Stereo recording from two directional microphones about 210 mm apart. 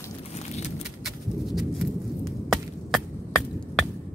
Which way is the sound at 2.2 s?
Centre (ahead or behind).